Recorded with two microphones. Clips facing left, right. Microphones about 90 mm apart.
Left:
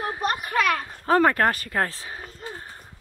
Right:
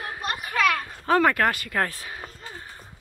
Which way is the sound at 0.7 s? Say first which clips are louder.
Left 1 dB; 30° left (ahead or behind).